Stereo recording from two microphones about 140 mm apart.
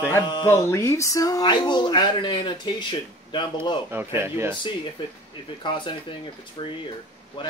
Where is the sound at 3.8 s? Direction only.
15° right (ahead or behind).